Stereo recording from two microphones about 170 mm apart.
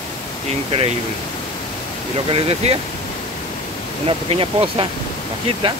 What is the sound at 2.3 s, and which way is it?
Speech, 35° right (ahead or behind).